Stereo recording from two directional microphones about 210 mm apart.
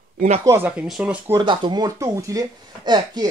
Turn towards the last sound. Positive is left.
turn(degrees=-20)  # may be behind; listen again after turning